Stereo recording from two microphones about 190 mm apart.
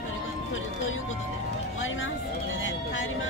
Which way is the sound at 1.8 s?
90° left.